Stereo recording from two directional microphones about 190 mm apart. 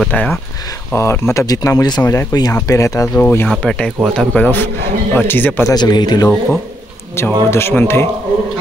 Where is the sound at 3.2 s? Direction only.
5° left (ahead or behind).